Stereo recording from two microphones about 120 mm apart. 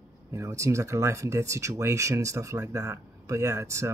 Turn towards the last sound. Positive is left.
turn(degrees=-25)  # may be behind; listen again after turning